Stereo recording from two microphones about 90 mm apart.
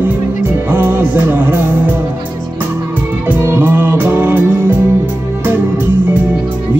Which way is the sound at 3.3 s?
20° right (ahead or behind).